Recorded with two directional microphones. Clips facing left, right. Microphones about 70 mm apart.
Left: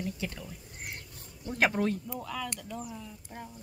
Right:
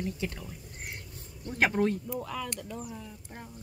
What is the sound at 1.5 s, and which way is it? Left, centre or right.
Speech, centre.